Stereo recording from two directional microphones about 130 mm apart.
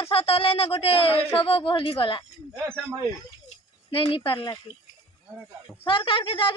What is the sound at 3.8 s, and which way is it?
Speech, 45° left (ahead or behind).